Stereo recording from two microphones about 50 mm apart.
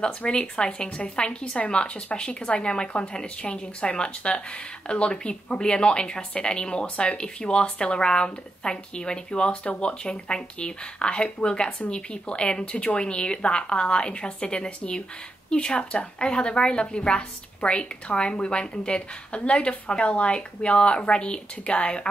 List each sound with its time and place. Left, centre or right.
0.0 s speech: centre